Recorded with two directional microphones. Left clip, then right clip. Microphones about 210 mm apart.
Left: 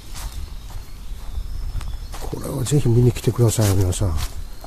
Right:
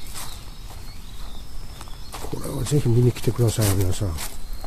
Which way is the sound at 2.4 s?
25° left (ahead or behind).